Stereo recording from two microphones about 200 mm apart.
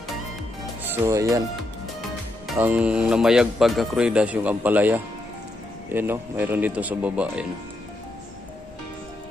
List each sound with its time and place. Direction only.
0.8 s speech: 15° right (ahead or behind)
2.4 s speech: 5° right (ahead or behind)